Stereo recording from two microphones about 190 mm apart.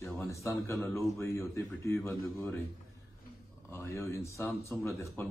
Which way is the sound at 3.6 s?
15° left (ahead or behind).